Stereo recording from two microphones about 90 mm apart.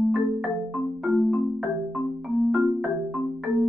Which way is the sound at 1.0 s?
5° left (ahead or behind).